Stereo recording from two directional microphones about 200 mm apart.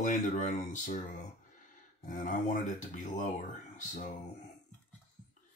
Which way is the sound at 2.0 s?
40° left (ahead or behind).